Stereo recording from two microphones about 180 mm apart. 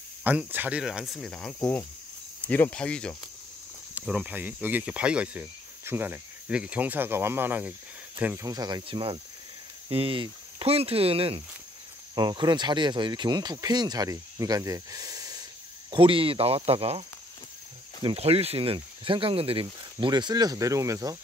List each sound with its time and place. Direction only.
0.2 s speech: 10° right (ahead or behind)
3.9 s speech: 5° right (ahead or behind); by 17.0 s 35° right (ahead or behind)
18.0 s speech: 35° right (ahead or behind)